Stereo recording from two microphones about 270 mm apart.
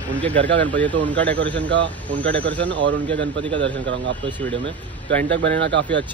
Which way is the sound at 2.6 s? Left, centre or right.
Right.